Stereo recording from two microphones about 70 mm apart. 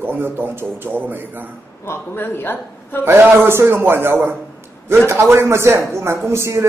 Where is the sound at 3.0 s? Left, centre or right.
Right.